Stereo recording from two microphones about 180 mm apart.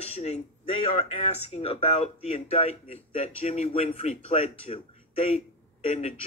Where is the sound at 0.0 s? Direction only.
35° left (ahead or behind).